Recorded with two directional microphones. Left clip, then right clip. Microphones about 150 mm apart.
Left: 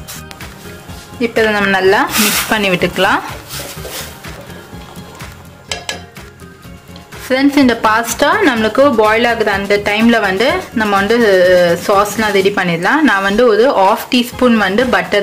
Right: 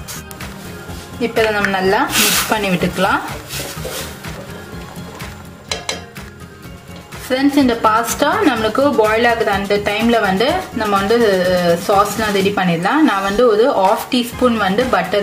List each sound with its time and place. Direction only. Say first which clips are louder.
1.2 s speech: left 3 dB; 25° left (ahead or behind)
7.2 s speech: left 3 dB; 25° left (ahead or behind)